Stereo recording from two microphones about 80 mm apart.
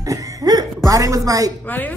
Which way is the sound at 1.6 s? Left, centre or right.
Left.